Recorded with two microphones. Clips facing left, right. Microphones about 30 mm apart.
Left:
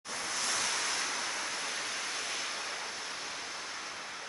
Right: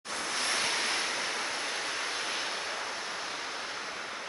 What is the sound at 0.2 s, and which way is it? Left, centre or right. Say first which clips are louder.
Waves: right 3 dB; right.